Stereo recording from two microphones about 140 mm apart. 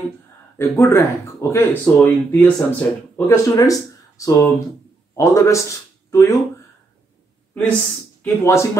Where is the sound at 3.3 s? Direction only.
25° left (ahead or behind).